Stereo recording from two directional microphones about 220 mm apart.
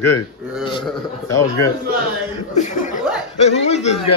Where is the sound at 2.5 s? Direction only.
35° left (ahead or behind).